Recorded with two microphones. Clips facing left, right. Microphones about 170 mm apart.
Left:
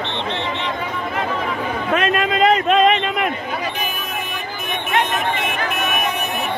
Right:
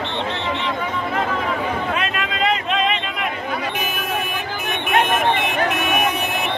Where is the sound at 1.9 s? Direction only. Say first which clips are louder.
Left 6 dB; 45° left (ahead or behind).